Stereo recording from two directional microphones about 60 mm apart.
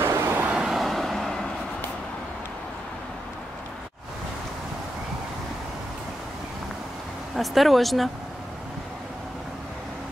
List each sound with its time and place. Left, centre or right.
0.0 s vehicle: right
0.5 s vehicle: centre
0.7 s vehicle: centre
7.3 s speech: centre